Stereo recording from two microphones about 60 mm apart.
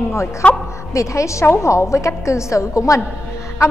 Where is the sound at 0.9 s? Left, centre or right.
Left.